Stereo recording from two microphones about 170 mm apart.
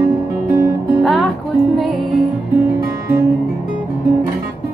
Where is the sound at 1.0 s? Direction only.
Centre (ahead or behind).